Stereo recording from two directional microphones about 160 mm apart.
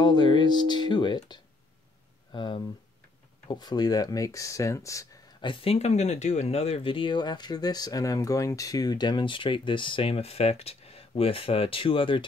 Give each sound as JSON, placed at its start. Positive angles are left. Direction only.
{"t": 0.0, "sound": "speech", "side_deg": 30}
{"t": 5.4, "sound": "speech", "side_deg": 35}